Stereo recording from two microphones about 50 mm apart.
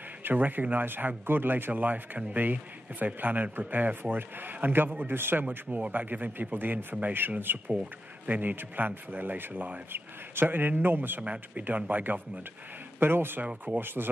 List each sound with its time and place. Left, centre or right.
0.2 s a man's voice: right
1.7 s a man's voice: right
5.4 s a man's voice: right
13.0 s a man's voice: right